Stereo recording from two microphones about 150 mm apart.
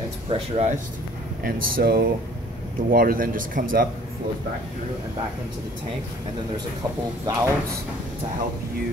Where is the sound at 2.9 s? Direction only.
70° right (ahead or behind).